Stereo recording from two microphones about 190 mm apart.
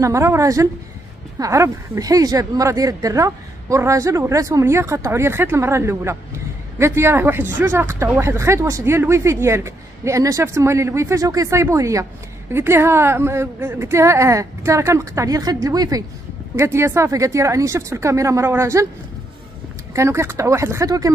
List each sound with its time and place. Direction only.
0.0 s a woman's voice: 15° right (ahead or behind)
19.9 s a woman's voice: 15° right (ahead or behind)